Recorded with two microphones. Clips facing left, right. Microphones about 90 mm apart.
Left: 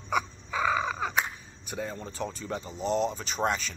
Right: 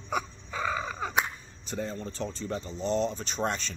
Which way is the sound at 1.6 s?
15° left (ahead or behind).